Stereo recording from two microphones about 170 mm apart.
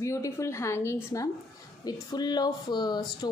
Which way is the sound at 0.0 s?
15° left (ahead or behind).